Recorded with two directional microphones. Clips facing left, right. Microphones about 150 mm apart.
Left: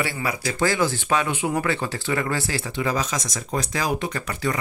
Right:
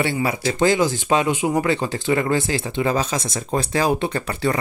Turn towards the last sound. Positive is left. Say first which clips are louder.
# right 4 dB
turn(degrees=-30)  # may be behind; listen again after turning